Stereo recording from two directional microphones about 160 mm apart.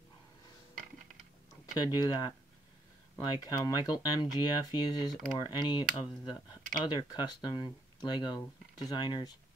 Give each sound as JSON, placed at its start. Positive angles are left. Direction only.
{"t": 2.0, "sound": "speech", "side_deg": 25}